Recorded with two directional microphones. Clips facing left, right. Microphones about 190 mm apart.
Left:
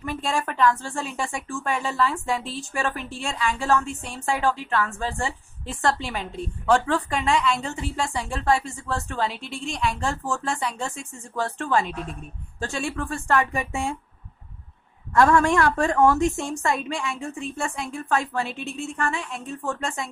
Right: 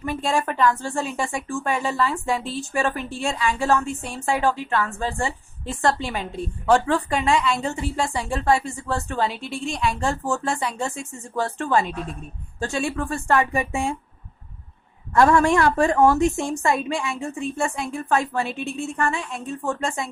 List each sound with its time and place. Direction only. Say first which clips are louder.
0.0 s a woman's voice: right 3 dB; 5° right (ahead or behind)
15.1 s a woman's voice: right 2 dB; 15° right (ahead or behind)